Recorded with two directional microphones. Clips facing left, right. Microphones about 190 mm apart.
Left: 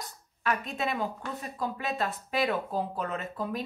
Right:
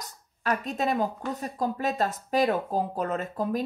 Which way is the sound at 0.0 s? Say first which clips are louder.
Right 1 dB; 40° right (ahead or behind).